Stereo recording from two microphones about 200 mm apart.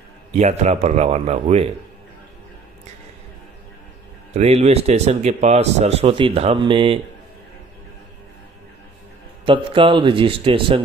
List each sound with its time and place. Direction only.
0.3 s a man's voice: 35° right (ahead or behind)
4.3 s a man's voice: 30° right (ahead or behind)
9.5 s speech: 25° right (ahead or behind)